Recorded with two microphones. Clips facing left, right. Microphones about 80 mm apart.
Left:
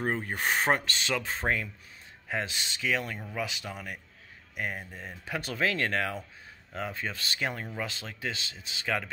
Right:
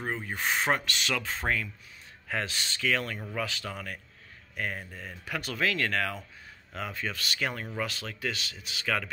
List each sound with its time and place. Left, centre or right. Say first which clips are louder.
0.0 s speech: left 2 dB; left